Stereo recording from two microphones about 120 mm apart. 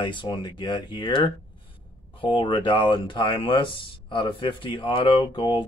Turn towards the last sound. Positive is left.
turn(degrees=45)  # may be behind; listen again after turning